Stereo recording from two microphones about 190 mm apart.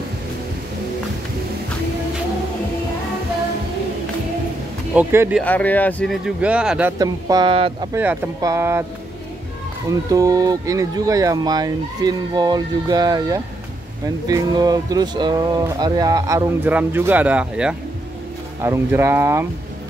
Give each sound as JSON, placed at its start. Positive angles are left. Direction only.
{"t": 4.9, "sound": "speech", "side_deg": -10}
{"t": 5.4, "sound": "speech", "side_deg": 10}
{"t": 7.0, "sound": "speech", "side_deg": -20}
{"t": 7.9, "sound": "speech", "side_deg": -10}
{"t": 9.8, "sound": "speech", "side_deg": -15}